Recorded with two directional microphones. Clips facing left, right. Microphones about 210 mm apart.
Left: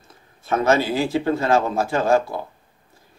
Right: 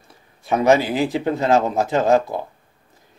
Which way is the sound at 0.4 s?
15° right (ahead or behind).